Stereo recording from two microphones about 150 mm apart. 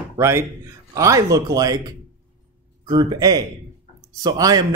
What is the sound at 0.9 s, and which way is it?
Speech, 20° right (ahead or behind).